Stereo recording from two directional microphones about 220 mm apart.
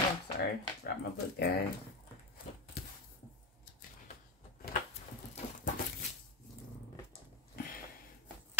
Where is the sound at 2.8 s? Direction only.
45° left (ahead or behind).